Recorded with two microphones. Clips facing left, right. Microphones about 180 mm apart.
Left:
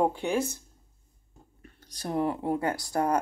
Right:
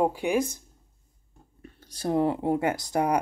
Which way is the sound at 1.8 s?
30° right (ahead or behind).